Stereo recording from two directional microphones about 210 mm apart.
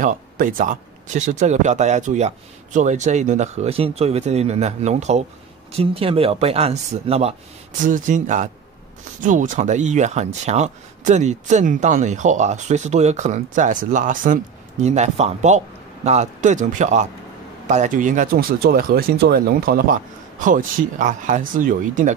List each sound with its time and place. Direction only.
0.0 s speech: 40° right (ahead or behind)